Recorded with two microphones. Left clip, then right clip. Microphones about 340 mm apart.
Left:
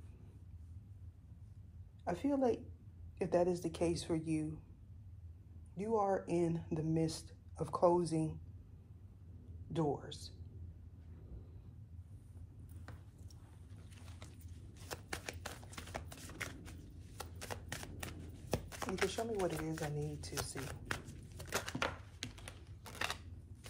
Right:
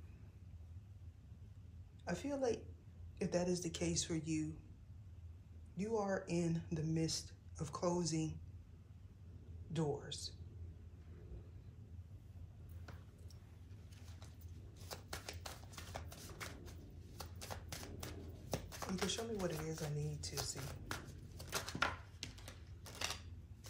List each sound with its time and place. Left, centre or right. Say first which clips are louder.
2.0 s a woman's voice: left 5 dB; left
5.8 s speech: left 5 dB; left
9.7 s speech: left 4 dB; left
14.9 s typewriter: left 4 dB; left
17.2 s shuffling cards: left 4 dB; left
18.0 s a sound: left 2 dB; left